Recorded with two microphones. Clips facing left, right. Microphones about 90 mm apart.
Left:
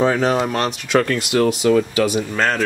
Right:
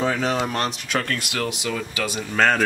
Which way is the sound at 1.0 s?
25° left (ahead or behind).